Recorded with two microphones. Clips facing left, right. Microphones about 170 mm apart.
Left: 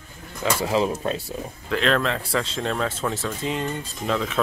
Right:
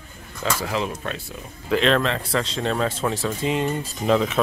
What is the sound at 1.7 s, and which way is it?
Speech, centre (ahead or behind).